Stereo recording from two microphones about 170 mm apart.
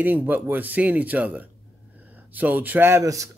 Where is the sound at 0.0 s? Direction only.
10° right (ahead or behind).